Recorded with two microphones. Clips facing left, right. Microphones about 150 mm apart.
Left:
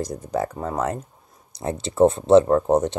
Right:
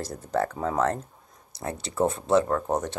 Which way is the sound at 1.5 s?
20° left (ahead or behind).